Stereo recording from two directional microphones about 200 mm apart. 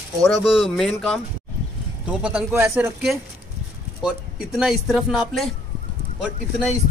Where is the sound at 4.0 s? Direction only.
5° right (ahead or behind).